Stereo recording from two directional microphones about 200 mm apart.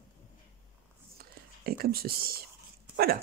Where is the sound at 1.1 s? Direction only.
50° right (ahead or behind).